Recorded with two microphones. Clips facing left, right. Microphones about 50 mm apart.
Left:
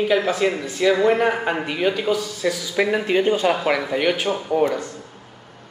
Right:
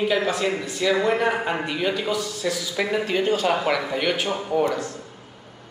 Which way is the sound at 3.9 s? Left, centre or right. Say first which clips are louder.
Left 3 dB; centre.